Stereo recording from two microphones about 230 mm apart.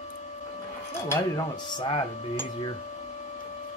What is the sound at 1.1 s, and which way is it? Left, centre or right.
Speech, centre.